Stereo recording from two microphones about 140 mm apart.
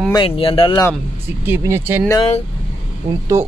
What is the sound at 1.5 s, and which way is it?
Speech, 20° right (ahead or behind).